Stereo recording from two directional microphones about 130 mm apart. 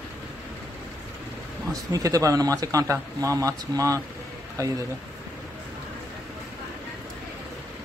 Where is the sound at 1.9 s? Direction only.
25° right (ahead or behind).